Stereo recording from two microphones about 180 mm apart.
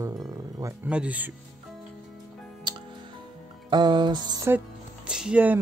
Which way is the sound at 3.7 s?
25° right (ahead or behind).